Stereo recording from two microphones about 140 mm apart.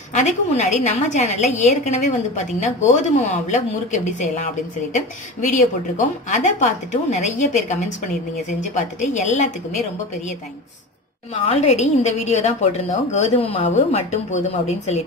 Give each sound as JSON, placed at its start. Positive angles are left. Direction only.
{"t": 0.1, "sound": "a woman's voice", "side_deg": 55}
{"t": 5.5, "sound": "a woman's voice", "side_deg": 60}
{"t": 11.4, "sound": "a woman's voice", "side_deg": 50}